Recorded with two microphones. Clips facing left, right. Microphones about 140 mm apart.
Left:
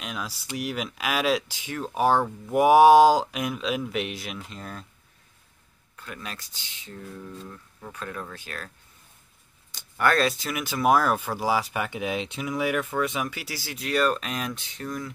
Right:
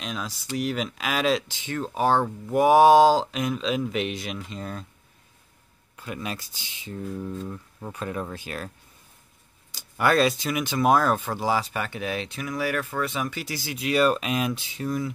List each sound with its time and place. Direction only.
0.0 s speech: 5° left (ahead or behind)
5.9 s speech: 15° right (ahead or behind)
7.2 s speech: 20° right (ahead or behind)
9.7 s speech: 5° right (ahead or behind)